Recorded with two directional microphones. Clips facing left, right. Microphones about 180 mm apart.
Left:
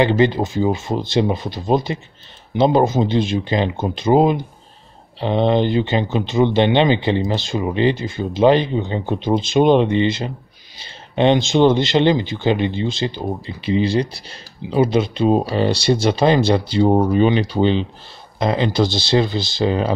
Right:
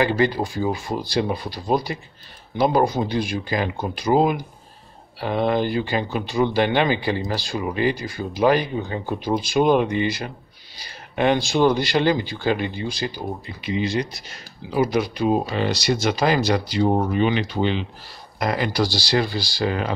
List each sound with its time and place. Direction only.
0.0 s speech: 20° left (ahead or behind)